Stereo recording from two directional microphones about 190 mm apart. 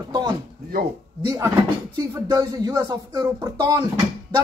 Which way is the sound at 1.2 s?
15° right (ahead or behind).